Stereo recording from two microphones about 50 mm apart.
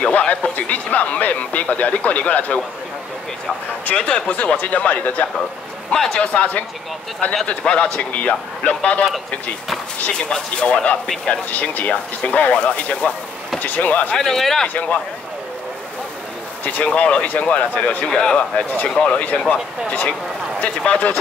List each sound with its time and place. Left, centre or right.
0.0 s speech: left
3.8 s speech: left
8.1 s speech: left
10.1 s speech: left
14.1 s speech: centre
14.7 s speech: left
16.6 s speech: left